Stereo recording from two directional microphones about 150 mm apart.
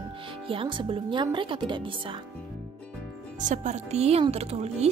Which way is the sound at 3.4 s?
55° right (ahead or behind).